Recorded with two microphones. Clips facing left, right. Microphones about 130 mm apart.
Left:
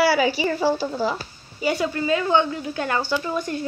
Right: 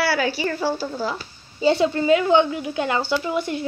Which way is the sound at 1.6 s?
25° right (ahead or behind).